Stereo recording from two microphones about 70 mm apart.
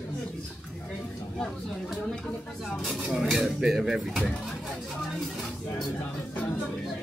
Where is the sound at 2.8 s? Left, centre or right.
Centre.